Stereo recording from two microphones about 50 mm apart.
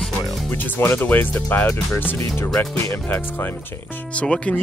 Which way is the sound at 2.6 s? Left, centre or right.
Left.